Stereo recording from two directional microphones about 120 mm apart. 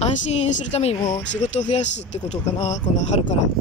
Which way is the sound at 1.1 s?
75° left (ahead or behind).